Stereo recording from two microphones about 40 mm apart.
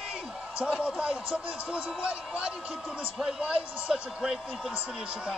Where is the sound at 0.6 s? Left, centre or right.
Right.